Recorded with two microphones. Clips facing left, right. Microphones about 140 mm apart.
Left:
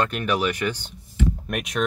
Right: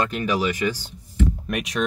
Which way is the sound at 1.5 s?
50° left (ahead or behind).